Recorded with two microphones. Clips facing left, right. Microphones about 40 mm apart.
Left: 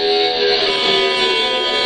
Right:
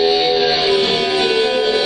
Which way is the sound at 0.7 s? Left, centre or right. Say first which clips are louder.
Even; left.